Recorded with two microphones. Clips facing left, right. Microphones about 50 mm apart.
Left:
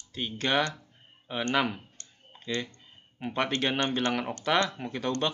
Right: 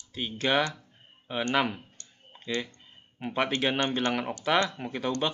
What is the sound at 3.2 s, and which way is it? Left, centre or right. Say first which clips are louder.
Speech: right 1 dB; centre.